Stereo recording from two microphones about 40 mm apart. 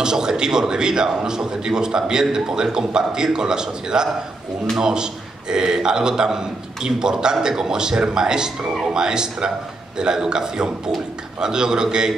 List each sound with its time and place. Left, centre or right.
0.0 s a man's voice: centre